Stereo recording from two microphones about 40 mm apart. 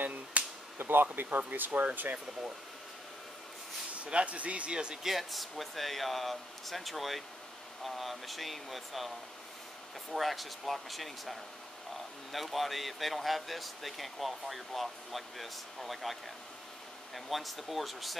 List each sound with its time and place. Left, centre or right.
0.0 s a sound: right
0.7 s speech: right
1.5 s speech: right
4.0 s speech: right
5.0 s speech: centre
10.1 s speech: centre